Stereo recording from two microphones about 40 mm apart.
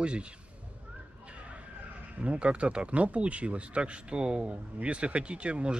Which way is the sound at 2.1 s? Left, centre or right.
Right.